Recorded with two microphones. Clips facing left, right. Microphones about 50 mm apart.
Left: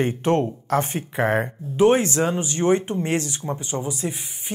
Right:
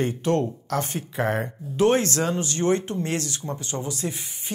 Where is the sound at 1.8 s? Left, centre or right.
Centre.